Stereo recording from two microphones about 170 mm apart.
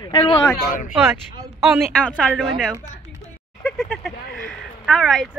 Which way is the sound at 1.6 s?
Centre (ahead or behind).